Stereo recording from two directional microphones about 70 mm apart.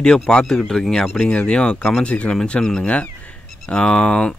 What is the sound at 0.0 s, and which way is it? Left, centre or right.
Speech, centre.